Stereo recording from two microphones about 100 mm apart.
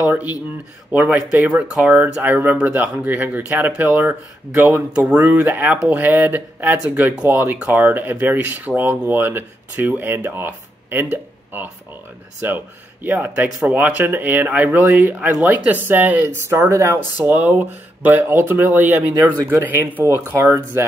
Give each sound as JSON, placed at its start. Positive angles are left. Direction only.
{"t": 0.0, "sound": "speech", "side_deg": -15}
{"t": 16.5, "sound": "speech", "side_deg": -30}
{"t": 17.3, "sound": "speech", "side_deg": -20}